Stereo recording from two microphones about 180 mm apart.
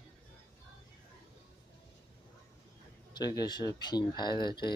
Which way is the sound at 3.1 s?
20° left (ahead or behind).